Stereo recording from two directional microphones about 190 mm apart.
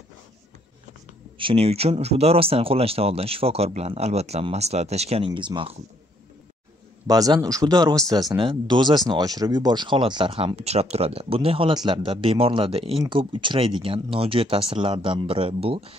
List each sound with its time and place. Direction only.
1.4 s speech: 30° right (ahead or behind)
7.1 s speech: 20° right (ahead or behind)